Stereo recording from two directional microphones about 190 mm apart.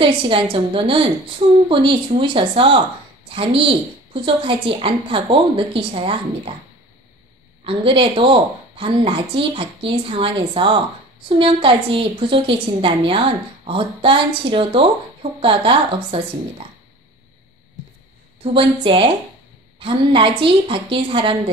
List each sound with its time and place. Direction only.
0.0 s a woman's voice: 30° right (ahead or behind)
7.6 s a woman's voice: 30° right (ahead or behind)
18.4 s a woman's voice: 30° right (ahead or behind)